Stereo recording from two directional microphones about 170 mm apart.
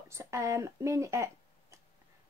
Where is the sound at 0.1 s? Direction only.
15° right (ahead or behind).